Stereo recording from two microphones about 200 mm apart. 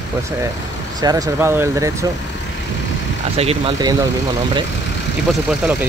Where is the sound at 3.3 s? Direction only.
30° right (ahead or behind).